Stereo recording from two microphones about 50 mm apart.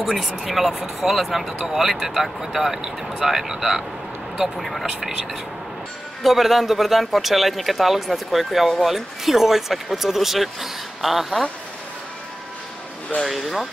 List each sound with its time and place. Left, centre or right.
0.0 s speech: centre
4.8 s speech: centre
13.2 s speech: centre